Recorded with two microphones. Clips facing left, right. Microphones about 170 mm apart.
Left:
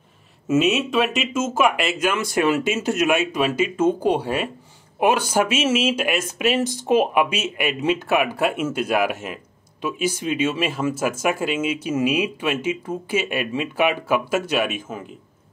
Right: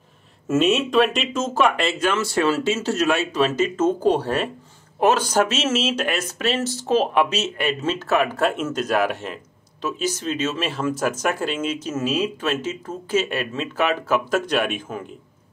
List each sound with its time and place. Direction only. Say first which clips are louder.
0.5 s speech: even; centre (ahead or behind)